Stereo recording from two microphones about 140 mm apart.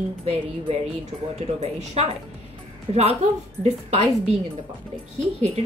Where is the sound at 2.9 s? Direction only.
45° right (ahead or behind).